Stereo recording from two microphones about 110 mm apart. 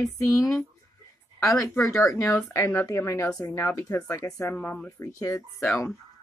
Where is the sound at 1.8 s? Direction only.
30° left (ahead or behind).